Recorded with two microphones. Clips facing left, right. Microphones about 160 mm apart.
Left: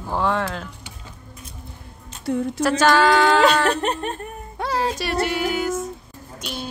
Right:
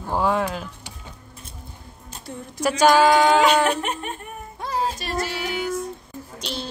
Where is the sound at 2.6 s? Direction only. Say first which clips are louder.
Right 2 dB; 15° right (ahead or behind).